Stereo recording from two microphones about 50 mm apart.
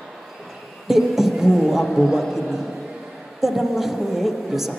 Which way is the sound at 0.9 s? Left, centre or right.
Centre.